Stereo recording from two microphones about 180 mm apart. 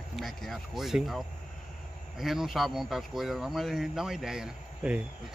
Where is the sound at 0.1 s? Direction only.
Centre (ahead or behind).